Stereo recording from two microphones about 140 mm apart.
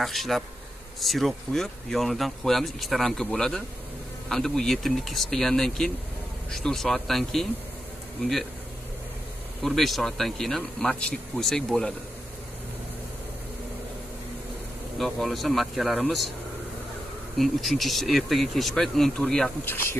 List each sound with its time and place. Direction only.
0.0 s speech: centre (ahead or behind)
9.6 s speech: centre (ahead or behind)
15.0 s speech: centre (ahead or behind)
17.4 s speech: centre (ahead or behind)